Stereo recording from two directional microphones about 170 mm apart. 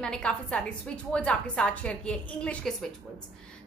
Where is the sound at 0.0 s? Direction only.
5° left (ahead or behind).